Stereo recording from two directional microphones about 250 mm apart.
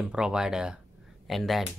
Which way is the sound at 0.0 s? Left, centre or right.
Centre.